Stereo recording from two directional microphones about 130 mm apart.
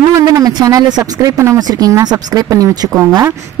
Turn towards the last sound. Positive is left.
turn(degrees=-25)  # may be behind; listen again after turning